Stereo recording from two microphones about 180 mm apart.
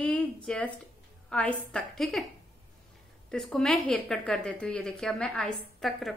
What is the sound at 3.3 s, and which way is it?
A woman's voice, 5° left (ahead or behind).